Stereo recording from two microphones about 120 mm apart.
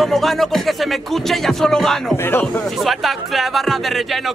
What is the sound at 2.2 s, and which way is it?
Speech, 20° left (ahead or behind).